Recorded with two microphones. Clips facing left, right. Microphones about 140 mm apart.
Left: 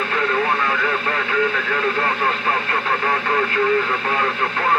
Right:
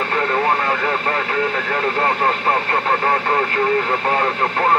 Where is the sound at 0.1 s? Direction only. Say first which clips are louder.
Right 2 dB; 35° right (ahead or behind).